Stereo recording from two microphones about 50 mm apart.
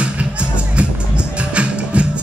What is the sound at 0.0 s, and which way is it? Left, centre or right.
Music, right.